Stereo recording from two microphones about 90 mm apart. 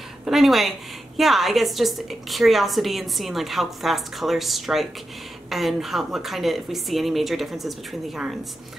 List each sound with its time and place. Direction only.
0.2 s a woman's voice: centre (ahead or behind)